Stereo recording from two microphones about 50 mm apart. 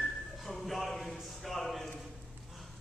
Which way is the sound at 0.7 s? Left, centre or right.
Centre.